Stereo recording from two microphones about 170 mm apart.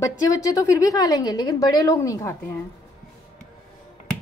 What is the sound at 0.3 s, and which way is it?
A woman's voice, 20° left (ahead or behind).